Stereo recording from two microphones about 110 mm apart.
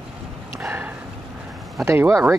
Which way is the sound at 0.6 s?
15° right (ahead or behind).